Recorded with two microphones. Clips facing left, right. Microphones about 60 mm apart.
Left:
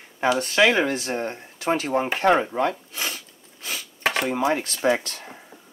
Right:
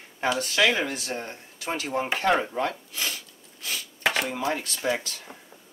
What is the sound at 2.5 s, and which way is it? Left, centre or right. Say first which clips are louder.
Zipper: left 4 dB; centre.